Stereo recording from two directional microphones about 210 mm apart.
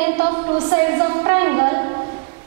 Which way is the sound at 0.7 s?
20° right (ahead or behind).